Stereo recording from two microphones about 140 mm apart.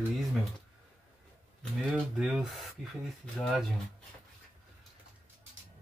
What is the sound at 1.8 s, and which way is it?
Speech, centre (ahead or behind).